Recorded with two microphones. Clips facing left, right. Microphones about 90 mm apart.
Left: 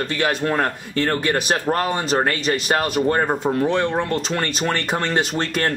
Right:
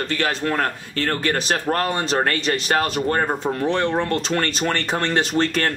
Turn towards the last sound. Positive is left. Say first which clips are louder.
# right 2 dB
turn(degrees=15)  # may be behind; listen again after turning